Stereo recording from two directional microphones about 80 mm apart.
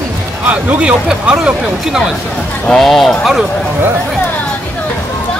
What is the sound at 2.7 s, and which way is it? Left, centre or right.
Speech, centre.